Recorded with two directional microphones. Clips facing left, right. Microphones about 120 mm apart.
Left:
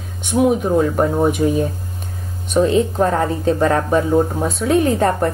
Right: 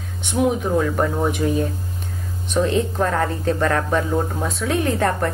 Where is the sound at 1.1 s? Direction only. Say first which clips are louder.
Left 4 dB; 20° left (ahead or behind).